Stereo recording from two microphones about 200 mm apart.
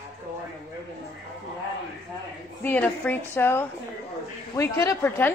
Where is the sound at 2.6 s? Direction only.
10° left (ahead or behind).